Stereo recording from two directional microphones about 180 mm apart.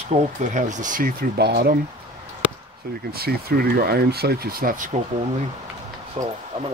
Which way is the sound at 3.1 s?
55° right (ahead or behind).